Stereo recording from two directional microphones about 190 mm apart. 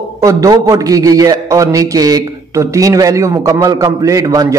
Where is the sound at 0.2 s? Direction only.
20° right (ahead or behind).